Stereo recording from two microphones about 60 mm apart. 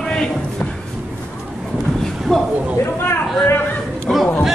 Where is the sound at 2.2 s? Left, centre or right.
Centre.